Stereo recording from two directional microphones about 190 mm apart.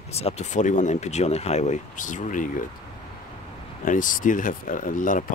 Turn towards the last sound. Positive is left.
turn(degrees=45)  # may be behind; listen again after turning